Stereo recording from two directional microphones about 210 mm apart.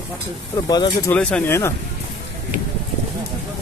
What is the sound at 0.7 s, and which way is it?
Speech, 20° left (ahead or behind).